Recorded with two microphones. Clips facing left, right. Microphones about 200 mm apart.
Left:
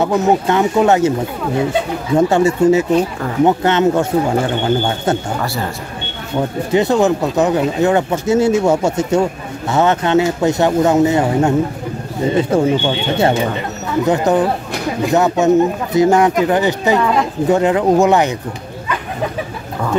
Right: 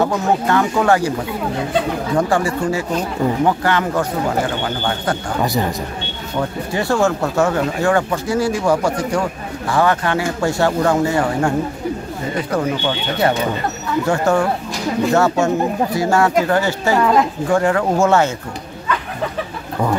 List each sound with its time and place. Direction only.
0.0 s speech: 20° left (ahead or behind)
2.1 s speech: 25° left (ahead or behind)
6.7 s speech: 20° left (ahead or behind)